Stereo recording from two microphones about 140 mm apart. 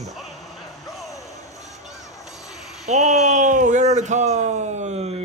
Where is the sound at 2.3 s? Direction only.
5° right (ahead or behind).